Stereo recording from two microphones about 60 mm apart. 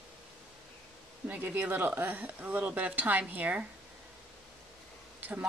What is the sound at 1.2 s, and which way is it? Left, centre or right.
Speech, right.